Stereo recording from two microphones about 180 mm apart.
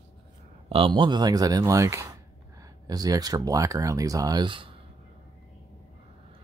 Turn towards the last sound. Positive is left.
turn(degrees=-25)  # may be behind; listen again after turning